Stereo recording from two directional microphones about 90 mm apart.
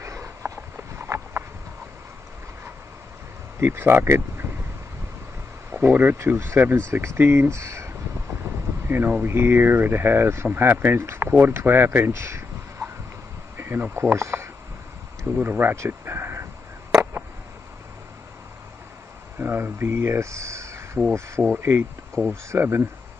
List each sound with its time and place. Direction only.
0.0 s a sound: 30° right (ahead or behind)
3.5 s speech: 25° right (ahead or behind)
5.7 s speech: 20° right (ahead or behind)
8.8 s speech: 25° right (ahead or behind)
19.3 s a sound: 25° right (ahead or behind)
21.5 s speech: 25° right (ahead or behind)